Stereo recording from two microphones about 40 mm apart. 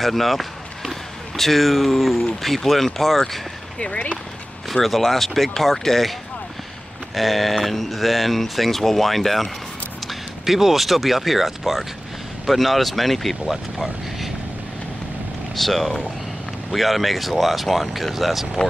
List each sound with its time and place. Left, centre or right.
0.0 s speech: centre
3.8 s speech: left
4.8 s speech: centre
7.2 s speech: centre
10.4 s speech: centre
15.5 s speech: centre